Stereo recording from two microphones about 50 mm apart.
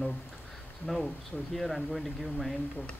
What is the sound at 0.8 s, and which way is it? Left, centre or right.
Speech, centre.